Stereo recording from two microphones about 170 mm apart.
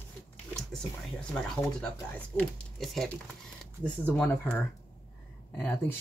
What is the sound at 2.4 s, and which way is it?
Speech, centre (ahead or behind).